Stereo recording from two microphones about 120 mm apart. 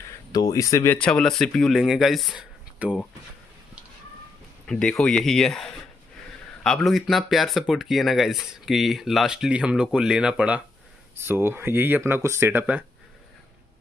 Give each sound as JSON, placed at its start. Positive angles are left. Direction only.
{"t": 0.3, "sound": "speech", "side_deg": 30}
{"t": 0.9, "sound": "speech", "side_deg": 10}
{"t": 2.8, "sound": "speech", "side_deg": -10}
{"t": 4.6, "sound": "speech", "side_deg": 5}
{"t": 11.1, "sound": "speech", "side_deg": -20}